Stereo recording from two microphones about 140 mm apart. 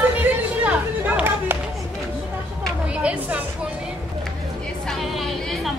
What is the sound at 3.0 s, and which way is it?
Speech, 10° right (ahead or behind).